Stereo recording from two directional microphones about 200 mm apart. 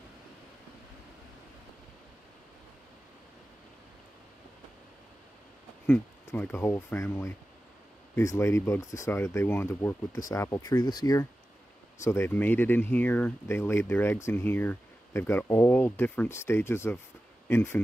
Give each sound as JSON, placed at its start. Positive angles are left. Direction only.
{"t": 5.9, "sound": "speech", "side_deg": 10}